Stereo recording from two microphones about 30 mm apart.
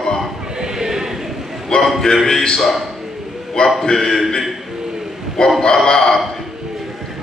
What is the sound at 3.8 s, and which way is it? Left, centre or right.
Speech, centre.